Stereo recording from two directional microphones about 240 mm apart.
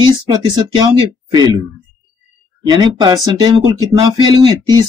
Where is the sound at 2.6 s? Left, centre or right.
Centre.